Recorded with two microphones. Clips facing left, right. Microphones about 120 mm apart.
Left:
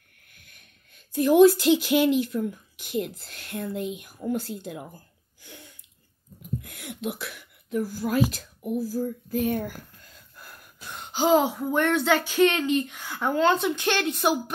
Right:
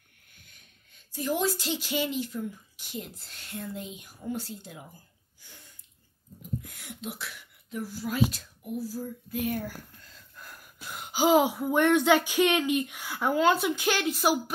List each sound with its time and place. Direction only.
0.4 s speech: 55° left (ahead or behind)
9.3 s a sound: 25° left (ahead or behind)
10.4 s speech: centre (ahead or behind)